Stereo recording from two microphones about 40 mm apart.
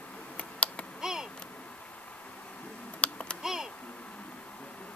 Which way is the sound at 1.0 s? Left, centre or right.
Centre.